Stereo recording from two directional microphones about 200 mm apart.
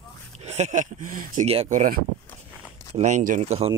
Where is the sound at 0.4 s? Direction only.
35° right (ahead or behind).